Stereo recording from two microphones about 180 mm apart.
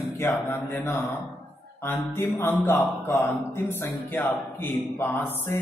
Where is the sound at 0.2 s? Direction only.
15° left (ahead or behind).